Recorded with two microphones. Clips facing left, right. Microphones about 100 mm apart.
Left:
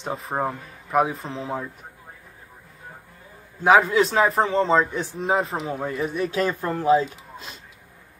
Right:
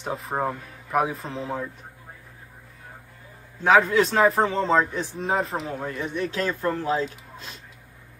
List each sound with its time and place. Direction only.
0.0 s a man's voice: centre (ahead or behind)
3.6 s a man's voice: 5° left (ahead or behind)